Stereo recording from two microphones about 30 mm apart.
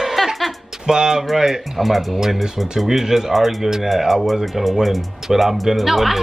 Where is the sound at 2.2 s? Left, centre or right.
Centre.